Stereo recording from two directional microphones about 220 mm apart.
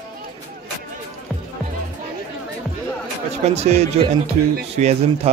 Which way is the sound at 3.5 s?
30° right (ahead or behind).